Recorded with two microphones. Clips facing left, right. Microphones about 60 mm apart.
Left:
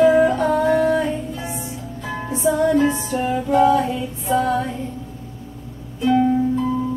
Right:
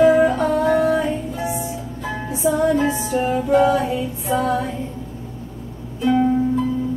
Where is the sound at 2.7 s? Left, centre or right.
Centre.